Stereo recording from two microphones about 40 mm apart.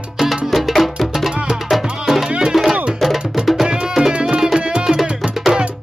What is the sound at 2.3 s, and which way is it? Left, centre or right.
Music, right.